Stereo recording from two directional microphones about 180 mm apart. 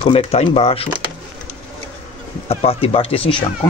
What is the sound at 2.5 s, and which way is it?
Speech, 35° left (ahead or behind).